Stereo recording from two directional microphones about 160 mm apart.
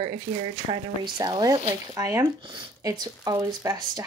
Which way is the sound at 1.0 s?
25° right (ahead or behind).